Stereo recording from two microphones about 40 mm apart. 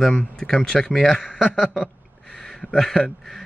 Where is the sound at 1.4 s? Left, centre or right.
Centre.